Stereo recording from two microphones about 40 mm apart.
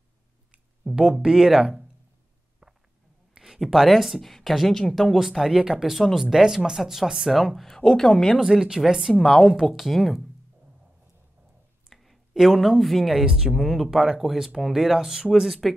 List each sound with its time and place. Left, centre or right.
0.9 s speech: centre
3.3 s a sound: centre
3.6 s speech: centre
7.6 s speech: centre
8.4 s speech: centre
11.9 s speech: centre
13.2 s speech: centre
13.6 s speech: centre